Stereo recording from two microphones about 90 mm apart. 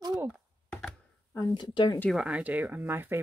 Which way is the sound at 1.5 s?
60° left (ahead or behind).